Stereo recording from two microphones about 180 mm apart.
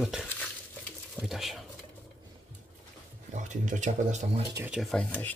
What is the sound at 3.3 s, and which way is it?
Speech, 45° right (ahead or behind).